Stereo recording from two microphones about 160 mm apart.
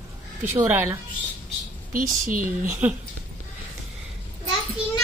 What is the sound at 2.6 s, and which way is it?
Speech, 10° right (ahead or behind).